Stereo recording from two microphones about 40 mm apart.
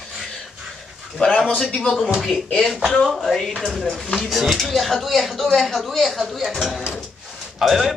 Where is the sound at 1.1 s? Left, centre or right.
Left.